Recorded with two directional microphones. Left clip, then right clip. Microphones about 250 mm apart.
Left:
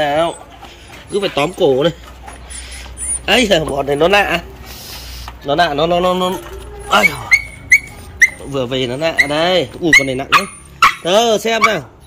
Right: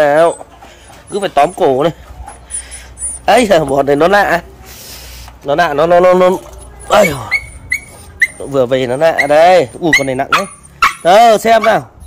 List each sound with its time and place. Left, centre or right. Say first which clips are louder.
0.0 s a sound: right 6 dB; right
1.1 s a man's voice: right 5 dB; centre
3.3 s a man's voice: right 4 dB; centre
3.7 s speech: right 3 dB; right
5.4 s a man's voice: right 3 dB; centre; by 7.2 s right
8.5 s speech: right 6 dB; right